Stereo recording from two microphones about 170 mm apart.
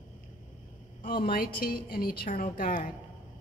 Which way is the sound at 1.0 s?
60° left (ahead or behind).